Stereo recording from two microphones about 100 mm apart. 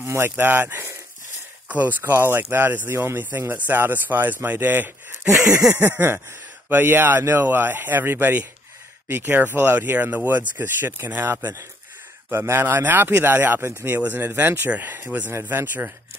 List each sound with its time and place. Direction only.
0.0 s speech: 25° right (ahead or behind)